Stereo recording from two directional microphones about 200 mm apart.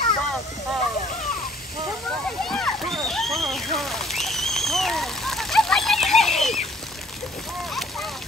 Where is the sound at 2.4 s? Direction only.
5° left (ahead or behind).